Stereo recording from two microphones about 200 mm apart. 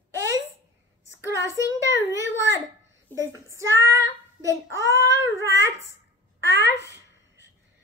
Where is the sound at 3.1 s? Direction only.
15° right (ahead or behind).